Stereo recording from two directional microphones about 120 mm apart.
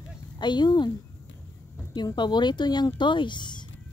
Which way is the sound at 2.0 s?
35° left (ahead or behind).